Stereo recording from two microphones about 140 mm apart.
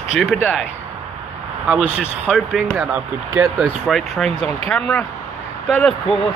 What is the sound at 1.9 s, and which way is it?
Speech, 5° right (ahead or behind).